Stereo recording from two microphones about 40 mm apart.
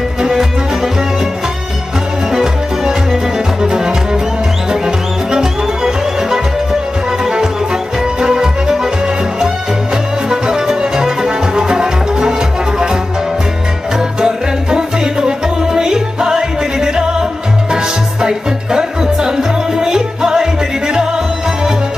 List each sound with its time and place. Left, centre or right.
0.2 s music: centre
2.3 s music: centre